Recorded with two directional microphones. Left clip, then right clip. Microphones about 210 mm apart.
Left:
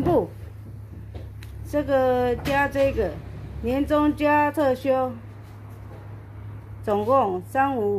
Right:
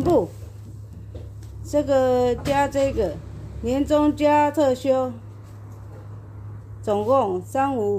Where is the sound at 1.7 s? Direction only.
55° right (ahead or behind).